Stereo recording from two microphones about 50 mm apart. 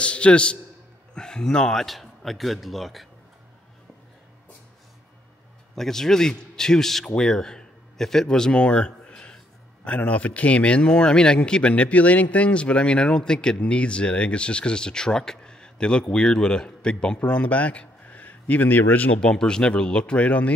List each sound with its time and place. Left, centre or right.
0.0 s a man's voice: left; by 3.1 s centre
5.8 s speech: centre
9.0 s a sound: left
9.8 s speech: left
17.2 s speech: left
19.1 s speech: centre